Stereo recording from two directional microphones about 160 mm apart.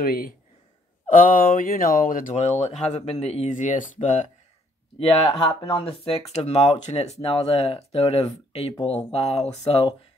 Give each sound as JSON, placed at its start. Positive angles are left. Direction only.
{"t": 0.0, "sound": "speech", "side_deg": 65}
{"t": 4.9, "sound": "speech", "side_deg": 35}